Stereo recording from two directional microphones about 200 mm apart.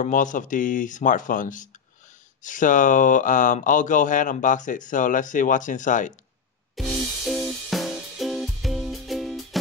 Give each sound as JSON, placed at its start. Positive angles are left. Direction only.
{"t": 0.0, "sound": "speech", "side_deg": 40}
{"t": 6.7, "sound": "music", "side_deg": 0}